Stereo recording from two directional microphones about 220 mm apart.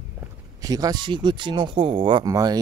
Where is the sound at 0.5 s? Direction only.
15° right (ahead or behind).